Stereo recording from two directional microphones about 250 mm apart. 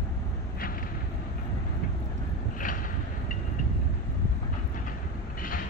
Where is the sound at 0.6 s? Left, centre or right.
Left.